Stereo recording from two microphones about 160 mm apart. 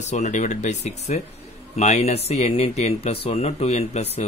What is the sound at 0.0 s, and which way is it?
Speech, 45° left (ahead or behind).